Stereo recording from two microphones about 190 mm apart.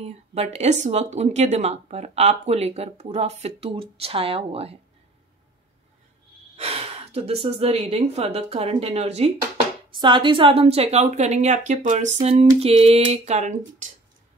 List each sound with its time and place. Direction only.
0.0 s speech: 35° right (ahead or behind)
6.5 s speech: 30° right (ahead or behind)